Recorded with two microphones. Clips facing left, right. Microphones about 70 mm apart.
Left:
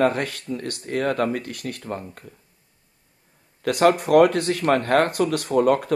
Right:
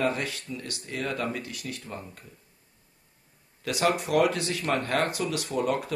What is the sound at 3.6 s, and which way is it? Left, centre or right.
Speech, left.